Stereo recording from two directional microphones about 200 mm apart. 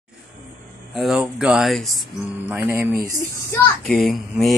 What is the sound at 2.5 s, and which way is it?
Speech, 10° right (ahead or behind).